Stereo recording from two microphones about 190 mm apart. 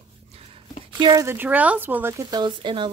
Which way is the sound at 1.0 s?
20° right (ahead or behind).